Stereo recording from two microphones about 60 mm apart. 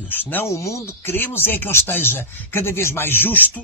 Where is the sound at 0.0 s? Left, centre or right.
Left.